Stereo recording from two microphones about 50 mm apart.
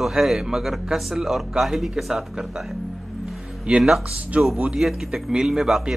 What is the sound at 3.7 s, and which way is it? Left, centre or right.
A man's voice, centre.